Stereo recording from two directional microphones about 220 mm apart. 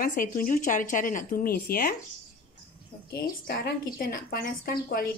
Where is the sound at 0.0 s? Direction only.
40° left (ahead or behind).